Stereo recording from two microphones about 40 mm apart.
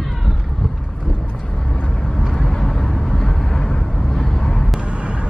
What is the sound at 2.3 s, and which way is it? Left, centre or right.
Vehicle, centre.